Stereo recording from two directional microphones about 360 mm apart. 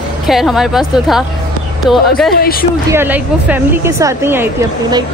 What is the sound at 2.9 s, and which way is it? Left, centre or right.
A woman's voice, centre.